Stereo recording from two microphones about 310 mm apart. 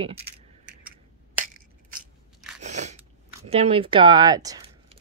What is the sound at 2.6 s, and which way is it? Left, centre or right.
Crunch, right.